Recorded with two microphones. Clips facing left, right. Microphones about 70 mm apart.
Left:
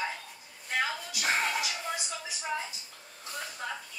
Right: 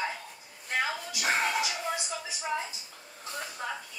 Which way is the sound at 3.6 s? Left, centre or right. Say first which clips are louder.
Right 1 dB; centre.